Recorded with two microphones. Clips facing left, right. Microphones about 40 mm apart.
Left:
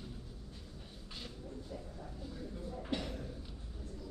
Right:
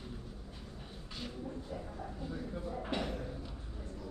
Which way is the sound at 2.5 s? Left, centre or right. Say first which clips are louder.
Right 2 dB; right.